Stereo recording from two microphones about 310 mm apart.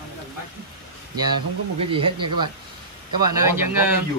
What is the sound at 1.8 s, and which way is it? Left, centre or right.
Speech, centre.